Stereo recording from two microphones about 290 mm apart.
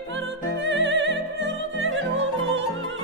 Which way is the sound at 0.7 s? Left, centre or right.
Right.